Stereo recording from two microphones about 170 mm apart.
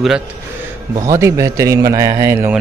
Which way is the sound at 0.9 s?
20° right (ahead or behind).